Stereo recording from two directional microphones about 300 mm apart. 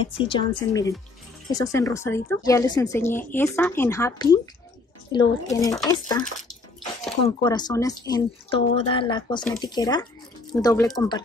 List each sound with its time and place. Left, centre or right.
0.2 s speech: centre
7.2 s speech: centre